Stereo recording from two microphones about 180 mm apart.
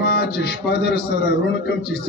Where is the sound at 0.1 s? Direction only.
65° left (ahead or behind).